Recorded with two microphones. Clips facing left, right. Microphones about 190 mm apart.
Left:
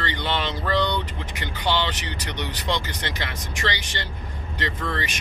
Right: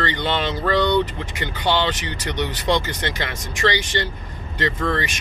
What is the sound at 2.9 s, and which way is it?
Speech, 50° right (ahead or behind).